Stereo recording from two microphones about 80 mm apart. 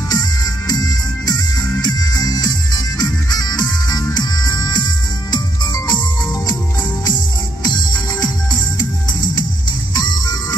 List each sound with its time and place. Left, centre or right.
0.1 s music: left
9.9 s music: left